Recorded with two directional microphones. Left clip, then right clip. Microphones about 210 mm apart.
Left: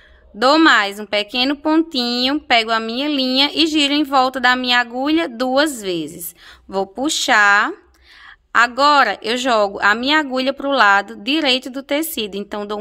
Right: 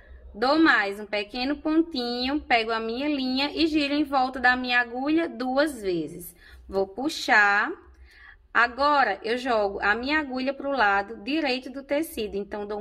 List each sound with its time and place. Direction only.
0.4 s a woman's voice: 40° left (ahead or behind)